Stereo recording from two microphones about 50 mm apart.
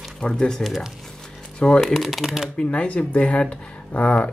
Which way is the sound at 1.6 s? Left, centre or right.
Left.